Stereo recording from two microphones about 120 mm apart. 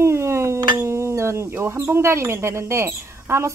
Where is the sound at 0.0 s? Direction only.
20° right (ahead or behind).